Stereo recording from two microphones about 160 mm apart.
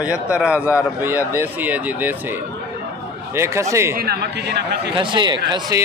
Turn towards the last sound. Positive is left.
turn(degrees=-25)  # may be behind; listen again after turning